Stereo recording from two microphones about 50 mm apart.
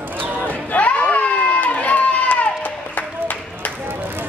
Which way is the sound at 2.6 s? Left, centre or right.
Left.